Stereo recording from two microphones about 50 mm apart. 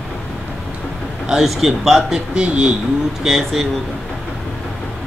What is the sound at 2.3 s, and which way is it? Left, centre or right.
Speech, right.